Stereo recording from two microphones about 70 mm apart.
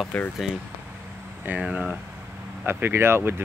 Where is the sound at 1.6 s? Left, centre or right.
Centre.